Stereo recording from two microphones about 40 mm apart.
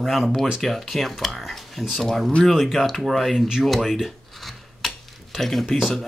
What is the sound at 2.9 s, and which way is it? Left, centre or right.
Speech, centre.